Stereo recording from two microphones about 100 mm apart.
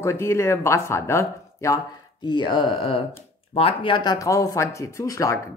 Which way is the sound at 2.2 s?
50° left (ahead or behind).